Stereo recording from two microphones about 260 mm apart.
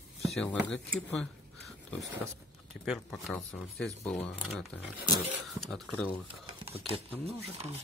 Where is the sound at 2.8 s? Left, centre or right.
Centre.